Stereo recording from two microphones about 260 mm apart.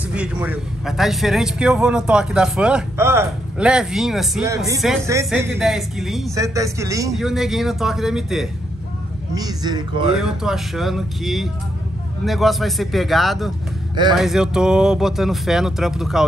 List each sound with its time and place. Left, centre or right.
0.1 s a man's voice: centre
6.3 s speech: centre
7.1 s a man's voice: centre
9.3 s speech: centre
10.1 s a man's voice: centre